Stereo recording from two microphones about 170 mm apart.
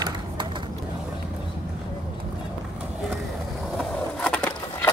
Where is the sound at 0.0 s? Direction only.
25° right (ahead or behind).